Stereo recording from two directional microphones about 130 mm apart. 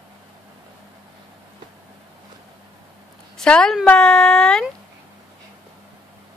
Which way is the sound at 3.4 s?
5° left (ahead or behind).